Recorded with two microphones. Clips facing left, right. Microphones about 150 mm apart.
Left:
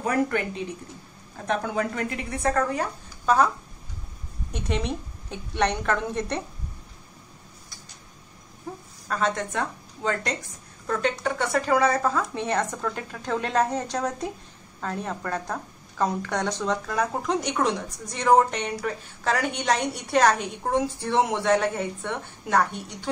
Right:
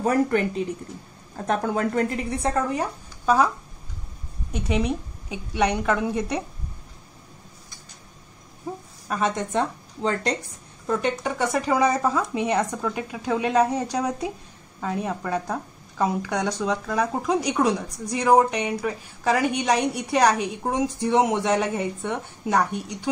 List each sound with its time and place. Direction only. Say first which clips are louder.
1.5 s speech: right 3 dB; 40° right (ahead or behind)
2.4 s speech: left 1 dB; 20° right (ahead or behind)
4.5 s a woman's voice: right 4 dB; 5° right (ahead or behind)
8.7 s a woman's voice: right 2 dB; 10° right (ahead or behind); by 10.3 s 30° right (ahead or behind)
10.9 s a woman's voice: right 1 dB; 15° right (ahead or behind)